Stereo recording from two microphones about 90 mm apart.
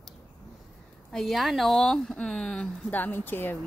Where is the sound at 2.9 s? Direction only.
20° left (ahead or behind).